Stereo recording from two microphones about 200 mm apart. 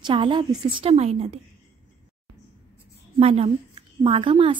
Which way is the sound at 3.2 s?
30° right (ahead or behind).